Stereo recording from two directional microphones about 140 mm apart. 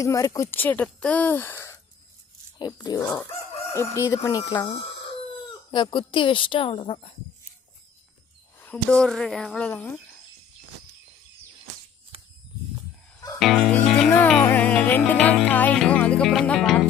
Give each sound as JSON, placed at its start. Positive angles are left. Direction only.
{"t": 0.0, "sound": "a woman's voice", "side_deg": 25}
{"t": 4.6, "sound": "speech", "side_deg": 45}
{"t": 5.7, "sound": "a woman's voice", "side_deg": 35}
{"t": 8.5, "sound": "a woman's voice", "side_deg": 10}
{"t": 13.4, "sound": "music", "side_deg": 0}
{"t": 15.3, "sound": "a woman's voice", "side_deg": 10}